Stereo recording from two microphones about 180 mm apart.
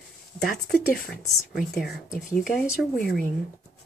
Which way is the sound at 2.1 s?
Centre (ahead or behind).